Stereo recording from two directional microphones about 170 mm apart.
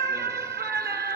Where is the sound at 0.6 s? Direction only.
70° right (ahead or behind).